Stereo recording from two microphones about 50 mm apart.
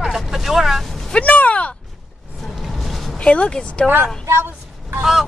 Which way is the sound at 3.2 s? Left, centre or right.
Left.